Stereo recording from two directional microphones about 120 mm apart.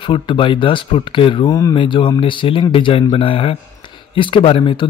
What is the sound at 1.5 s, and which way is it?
Speech, 30° left (ahead or behind).